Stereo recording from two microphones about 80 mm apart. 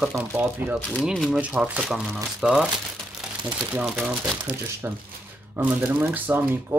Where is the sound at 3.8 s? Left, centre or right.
Centre.